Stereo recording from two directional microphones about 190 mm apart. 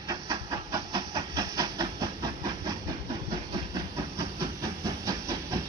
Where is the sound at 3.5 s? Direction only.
20° right (ahead or behind).